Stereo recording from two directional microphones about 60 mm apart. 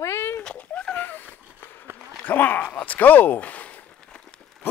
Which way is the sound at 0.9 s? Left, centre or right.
Left.